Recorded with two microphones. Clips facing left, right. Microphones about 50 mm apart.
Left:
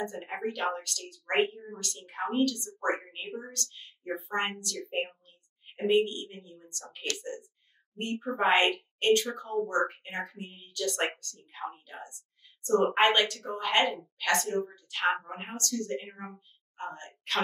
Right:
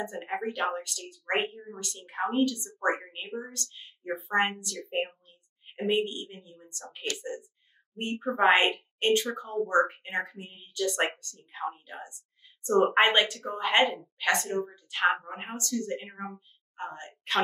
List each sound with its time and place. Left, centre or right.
0.0 s speech: centre
1.8 s a woman's voice: centre